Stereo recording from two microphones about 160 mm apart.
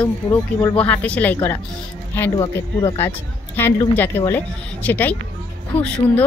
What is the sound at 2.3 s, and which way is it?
Speech, 25° left (ahead or behind).